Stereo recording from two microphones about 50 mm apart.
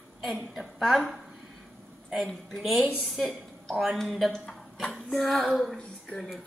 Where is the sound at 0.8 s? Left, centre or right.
Centre.